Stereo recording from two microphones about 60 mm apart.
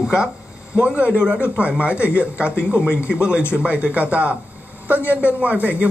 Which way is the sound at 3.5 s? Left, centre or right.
Right.